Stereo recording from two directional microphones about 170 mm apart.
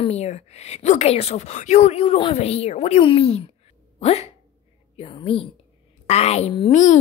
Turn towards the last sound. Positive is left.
turn(degrees=45)  # may be behind; listen again after turning